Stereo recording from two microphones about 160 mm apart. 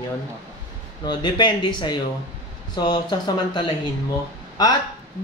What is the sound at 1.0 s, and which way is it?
Speech, 30° left (ahead or behind).